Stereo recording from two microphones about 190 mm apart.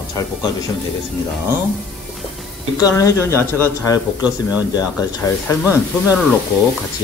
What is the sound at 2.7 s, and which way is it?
Speech, 20° left (ahead or behind).